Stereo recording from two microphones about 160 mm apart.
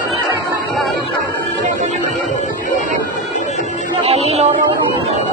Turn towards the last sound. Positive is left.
turn(degrees=-40)  # may be behind; listen again after turning